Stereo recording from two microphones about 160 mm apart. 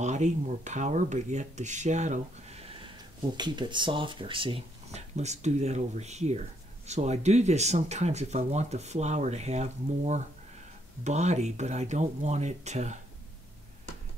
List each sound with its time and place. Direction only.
0.0 s speech: 50° right (ahead or behind)
3.3 s speech: 30° right (ahead or behind); by 13.0 s 45° right (ahead or behind)